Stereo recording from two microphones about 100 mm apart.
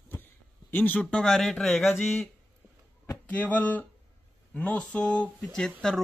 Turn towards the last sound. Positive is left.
turn(degrees=5)  # may be behind; listen again after turning